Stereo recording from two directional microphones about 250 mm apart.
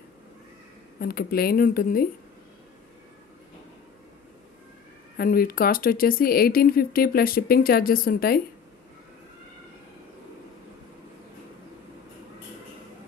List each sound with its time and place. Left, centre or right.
0.9 s speech: left
5.1 s speech: left